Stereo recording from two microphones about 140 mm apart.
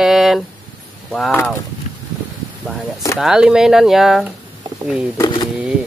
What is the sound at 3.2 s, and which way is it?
Speech, 5° right (ahead or behind).